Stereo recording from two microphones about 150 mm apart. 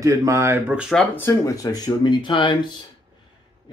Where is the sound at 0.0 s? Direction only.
20° right (ahead or behind).